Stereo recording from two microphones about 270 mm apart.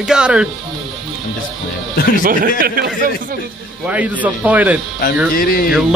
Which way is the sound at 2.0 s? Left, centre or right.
Left.